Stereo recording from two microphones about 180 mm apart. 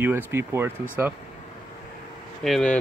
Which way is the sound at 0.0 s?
15° right (ahead or behind).